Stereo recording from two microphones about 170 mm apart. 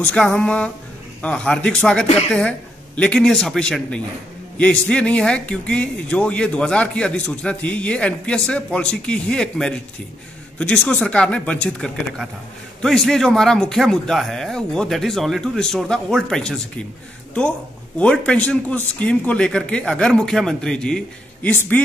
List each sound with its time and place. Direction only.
0.1 s speech: 5° left (ahead or behind)
17.9 s speech: 5° left (ahead or behind)